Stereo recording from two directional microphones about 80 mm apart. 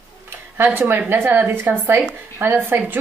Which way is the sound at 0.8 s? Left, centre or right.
Right.